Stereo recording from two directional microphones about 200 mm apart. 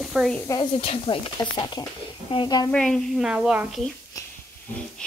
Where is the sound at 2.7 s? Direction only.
5° left (ahead or behind).